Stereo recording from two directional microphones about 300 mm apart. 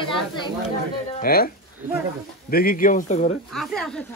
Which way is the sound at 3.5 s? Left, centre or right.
Centre.